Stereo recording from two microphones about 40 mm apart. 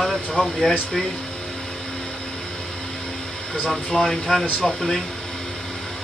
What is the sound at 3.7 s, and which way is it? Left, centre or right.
Speech, centre.